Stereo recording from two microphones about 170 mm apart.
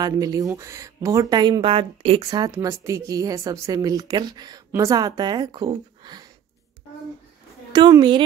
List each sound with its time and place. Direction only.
0.0 s speech: 20° right (ahead or behind)
7.7 s speech: 25° right (ahead or behind)